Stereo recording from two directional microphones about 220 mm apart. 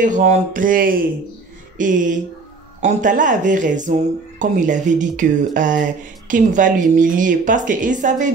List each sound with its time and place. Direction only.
0.0 s speech: 35° right (ahead or behind)